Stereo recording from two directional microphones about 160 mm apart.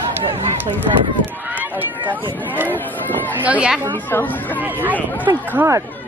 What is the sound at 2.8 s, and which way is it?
Speech, 10° left (ahead or behind).